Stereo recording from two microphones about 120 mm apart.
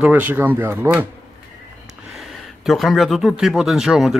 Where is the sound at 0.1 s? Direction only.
15° right (ahead or behind).